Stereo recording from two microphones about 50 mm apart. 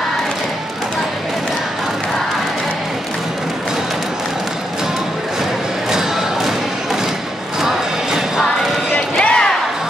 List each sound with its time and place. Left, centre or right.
5.9 s crowd: centre
7.6 s music: centre
9.2 s music: centre